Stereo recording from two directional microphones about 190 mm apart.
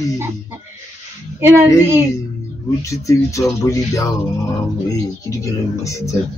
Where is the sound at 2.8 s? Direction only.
15° left (ahead or behind).